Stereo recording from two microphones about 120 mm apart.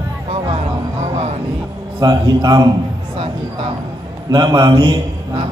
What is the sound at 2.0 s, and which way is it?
Speech, 35° right (ahead or behind).